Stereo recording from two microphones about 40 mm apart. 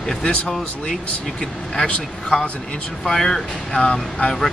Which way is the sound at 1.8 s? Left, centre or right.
Centre.